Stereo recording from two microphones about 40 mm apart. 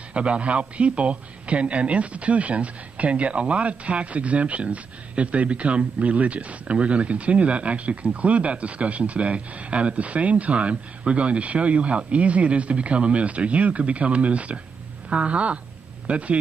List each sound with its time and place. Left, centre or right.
0.1 s a man's voice: right